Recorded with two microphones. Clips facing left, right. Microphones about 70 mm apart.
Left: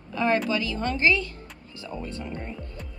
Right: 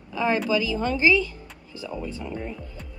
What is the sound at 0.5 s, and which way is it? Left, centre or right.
Speech, left.